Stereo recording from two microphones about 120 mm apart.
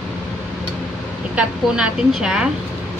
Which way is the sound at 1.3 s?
10° right (ahead or behind).